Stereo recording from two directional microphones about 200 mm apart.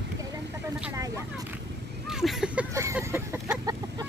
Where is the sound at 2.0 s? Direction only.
Centre (ahead or behind).